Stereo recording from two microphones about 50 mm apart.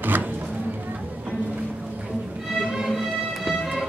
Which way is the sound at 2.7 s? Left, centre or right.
Centre.